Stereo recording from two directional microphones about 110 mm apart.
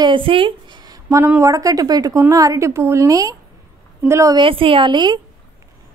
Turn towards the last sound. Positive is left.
turn(degrees=-45)  # may be behind; listen again after turning